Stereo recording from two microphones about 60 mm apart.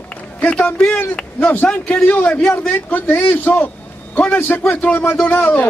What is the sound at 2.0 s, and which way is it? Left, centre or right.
A man's voice, left.